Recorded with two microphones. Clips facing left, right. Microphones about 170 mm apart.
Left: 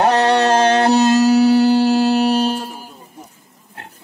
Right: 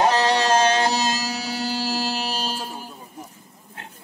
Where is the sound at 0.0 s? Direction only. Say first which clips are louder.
Left 5 dB; 60° left (ahead or behind).